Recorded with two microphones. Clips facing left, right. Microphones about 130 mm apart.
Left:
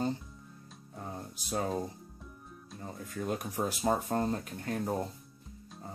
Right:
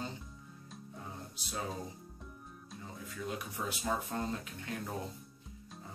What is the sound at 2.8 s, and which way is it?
Speech, 45° left (ahead or behind).